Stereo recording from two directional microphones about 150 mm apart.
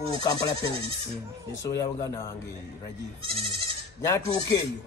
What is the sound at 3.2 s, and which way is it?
Goat, 35° right (ahead or behind).